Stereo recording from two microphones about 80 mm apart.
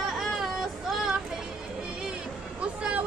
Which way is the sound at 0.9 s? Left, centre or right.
Centre.